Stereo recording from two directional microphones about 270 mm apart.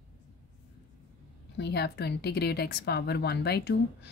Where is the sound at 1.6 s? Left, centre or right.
Left.